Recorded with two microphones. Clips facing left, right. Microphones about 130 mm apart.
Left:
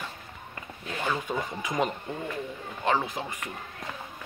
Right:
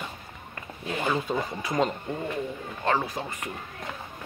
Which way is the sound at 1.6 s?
15° left (ahead or behind).